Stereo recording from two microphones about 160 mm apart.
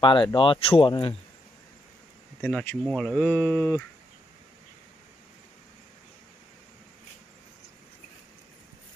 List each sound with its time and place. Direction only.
0.0 s speech: 30° left (ahead or behind)
2.4 s speech: 10° left (ahead or behind)